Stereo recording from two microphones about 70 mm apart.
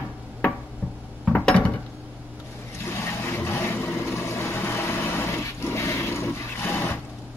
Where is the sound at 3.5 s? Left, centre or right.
Left.